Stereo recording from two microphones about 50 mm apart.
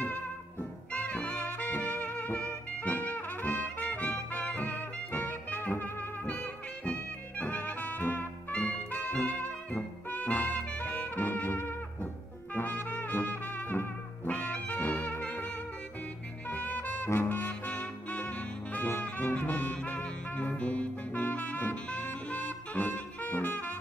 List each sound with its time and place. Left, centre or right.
0.0 s music: left
2.8 s trumpet: left
6.2 s music: left
8.5 s brass instrument: left
10.8 s music: left
12.5 s brass instrument: left
16.4 s music: left